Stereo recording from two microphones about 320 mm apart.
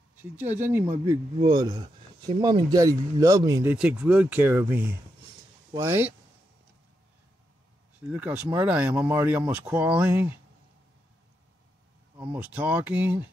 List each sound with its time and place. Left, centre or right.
0.2 s speech: centre
8.1 s speech: centre
12.2 s speech: centre